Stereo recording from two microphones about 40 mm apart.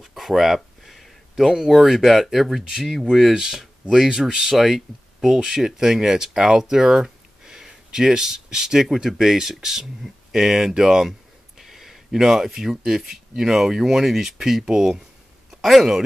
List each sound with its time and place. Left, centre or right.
0.0 s speech: centre
0.6 s a sound: centre
1.3 s speech: centre
3.3 s speech: centre
4.6 s speech: centre